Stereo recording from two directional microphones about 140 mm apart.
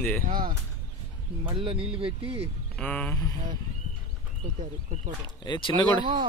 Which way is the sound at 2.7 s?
10° left (ahead or behind).